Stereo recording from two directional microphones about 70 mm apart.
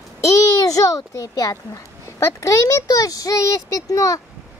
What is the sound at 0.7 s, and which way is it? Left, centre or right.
A child's voice, left.